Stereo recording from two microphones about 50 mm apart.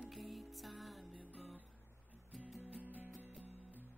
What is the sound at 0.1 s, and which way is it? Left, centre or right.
Music, centre.